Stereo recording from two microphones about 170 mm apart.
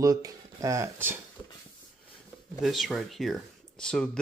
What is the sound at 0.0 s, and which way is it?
Speech, 20° right (ahead or behind).